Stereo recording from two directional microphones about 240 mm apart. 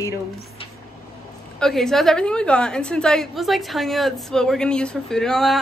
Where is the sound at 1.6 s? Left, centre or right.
Centre.